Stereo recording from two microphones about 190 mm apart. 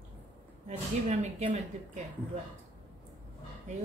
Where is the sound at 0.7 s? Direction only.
35° right (ahead or behind).